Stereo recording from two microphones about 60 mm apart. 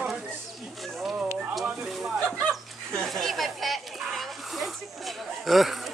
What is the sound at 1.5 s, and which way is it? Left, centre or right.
Speech, centre.